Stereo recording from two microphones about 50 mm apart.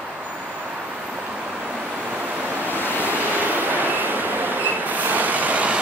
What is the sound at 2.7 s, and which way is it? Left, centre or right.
Waves, left.